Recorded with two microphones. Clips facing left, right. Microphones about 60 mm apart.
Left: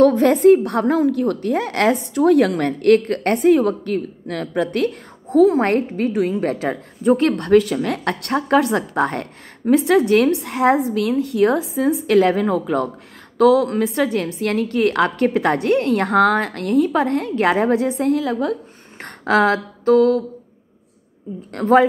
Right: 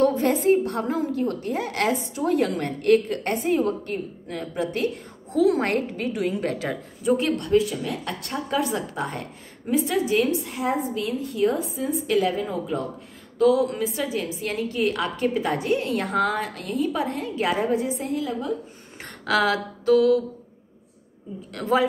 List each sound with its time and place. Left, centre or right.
0.0 s a woman's voice: left
4.6 s a woman's voice: left
7.2 s a woman's voice: left
11.0 s a woman's voice: left
13.9 s a woman's voice: left
19.2 s a sound: left
21.5 s a woman's voice: left